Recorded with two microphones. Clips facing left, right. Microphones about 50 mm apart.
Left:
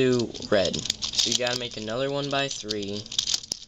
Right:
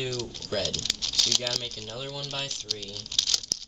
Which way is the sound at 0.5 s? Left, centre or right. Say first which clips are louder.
Left 8 dB; left.